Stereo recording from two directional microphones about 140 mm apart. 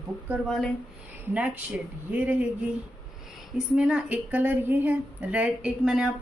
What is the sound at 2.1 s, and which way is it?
Speech, 10° right (ahead or behind).